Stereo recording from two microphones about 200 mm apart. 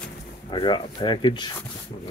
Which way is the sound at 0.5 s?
25° left (ahead or behind).